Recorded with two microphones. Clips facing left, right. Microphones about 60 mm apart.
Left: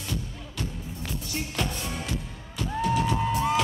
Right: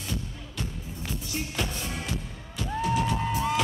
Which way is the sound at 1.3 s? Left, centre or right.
Centre.